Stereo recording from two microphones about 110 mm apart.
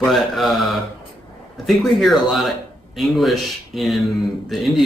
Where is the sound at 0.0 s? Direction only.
Centre (ahead or behind).